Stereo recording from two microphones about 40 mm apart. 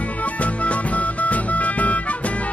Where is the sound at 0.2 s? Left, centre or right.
Left.